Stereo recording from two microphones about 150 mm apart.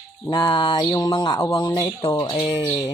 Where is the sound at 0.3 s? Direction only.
35° left (ahead or behind).